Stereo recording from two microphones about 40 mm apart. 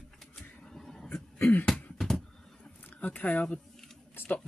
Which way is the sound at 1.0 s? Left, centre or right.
Left.